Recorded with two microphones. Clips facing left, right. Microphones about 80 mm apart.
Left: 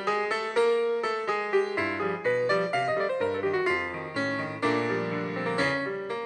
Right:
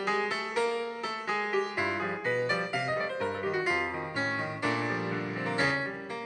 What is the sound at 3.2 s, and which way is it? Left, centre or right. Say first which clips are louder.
Music: left 4 dB; centre.